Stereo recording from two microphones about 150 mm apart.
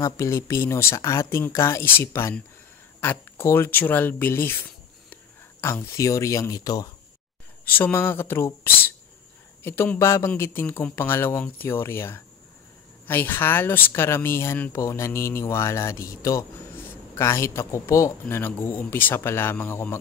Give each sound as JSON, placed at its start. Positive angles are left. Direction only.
{"t": 0.0, "sound": "speech", "side_deg": 20}
{"t": 7.6, "sound": "speech", "side_deg": 15}
{"t": 9.6, "sound": "speech", "side_deg": 15}